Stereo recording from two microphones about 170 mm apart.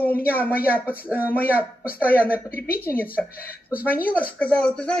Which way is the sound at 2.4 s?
60° left (ahead or behind).